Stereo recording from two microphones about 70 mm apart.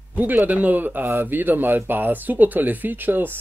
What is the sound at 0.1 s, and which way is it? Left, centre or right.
Speech, right.